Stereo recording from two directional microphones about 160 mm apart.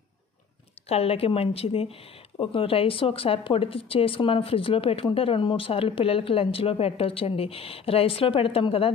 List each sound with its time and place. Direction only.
0.8 s speech: 40° left (ahead or behind)